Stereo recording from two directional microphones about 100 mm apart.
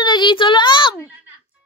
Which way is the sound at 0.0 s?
50° left (ahead or behind).